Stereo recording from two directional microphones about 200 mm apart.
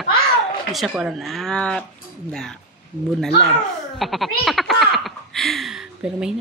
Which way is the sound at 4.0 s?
Centre (ahead or behind).